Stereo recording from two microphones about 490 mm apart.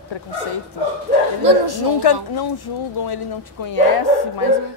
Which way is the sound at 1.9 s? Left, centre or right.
Left.